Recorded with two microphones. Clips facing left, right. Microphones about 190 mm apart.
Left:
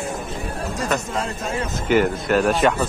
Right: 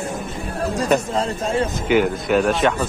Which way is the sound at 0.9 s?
30° right (ahead or behind).